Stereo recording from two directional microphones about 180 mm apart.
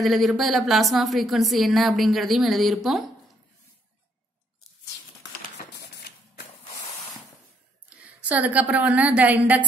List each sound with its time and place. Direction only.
0.0 s a woman's voice: centre (ahead or behind)
5.8 s a sound: 65° left (ahead or behind)
8.0 s a woman's voice: 10° right (ahead or behind)